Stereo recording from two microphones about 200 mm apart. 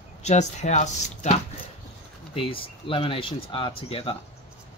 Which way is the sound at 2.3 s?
25° left (ahead or behind).